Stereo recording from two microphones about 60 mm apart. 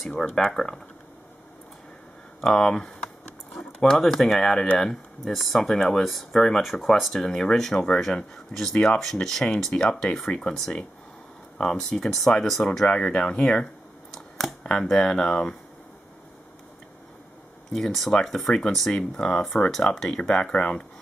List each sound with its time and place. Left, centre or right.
0.0 s speech: centre
2.4 s speech: centre
12.8 s speech: centre
14.1 s a sound: centre
14.7 s speech: centre
17.7 s speech: centre